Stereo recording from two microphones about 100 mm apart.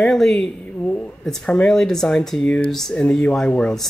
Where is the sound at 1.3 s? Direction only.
5° left (ahead or behind).